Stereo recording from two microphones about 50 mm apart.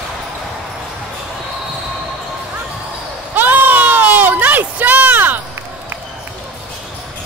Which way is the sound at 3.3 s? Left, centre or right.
Right.